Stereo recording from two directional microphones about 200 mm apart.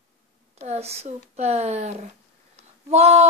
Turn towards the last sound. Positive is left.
turn(degrees=-35)  # may be behind; listen again after turning